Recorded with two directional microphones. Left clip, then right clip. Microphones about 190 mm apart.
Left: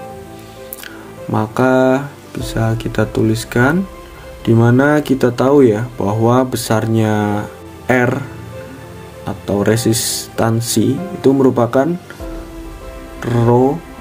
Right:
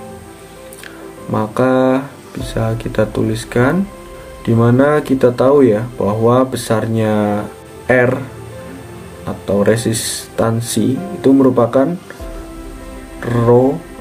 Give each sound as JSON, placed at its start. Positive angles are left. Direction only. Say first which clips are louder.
{"t": 1.3, "sound": "speech", "louder": "even", "side_deg": 40}
{"t": 9.5, "sound": "speech", "louder": "right 1 dB", "side_deg": 40}
{"t": 13.2, "sound": "speech", "louder": "right 2 dB", "side_deg": 40}